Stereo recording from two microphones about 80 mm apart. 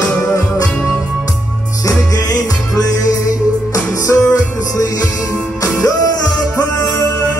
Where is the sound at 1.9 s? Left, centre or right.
Left.